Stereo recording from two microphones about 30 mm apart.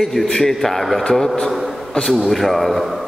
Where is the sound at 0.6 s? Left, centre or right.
Centre.